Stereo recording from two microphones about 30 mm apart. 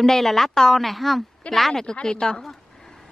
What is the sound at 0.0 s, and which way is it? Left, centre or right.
A woman's voice, centre.